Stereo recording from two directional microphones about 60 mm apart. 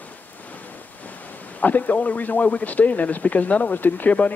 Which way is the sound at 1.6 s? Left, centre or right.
Left.